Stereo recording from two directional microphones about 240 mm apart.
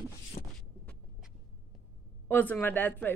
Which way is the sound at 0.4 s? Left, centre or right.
Left.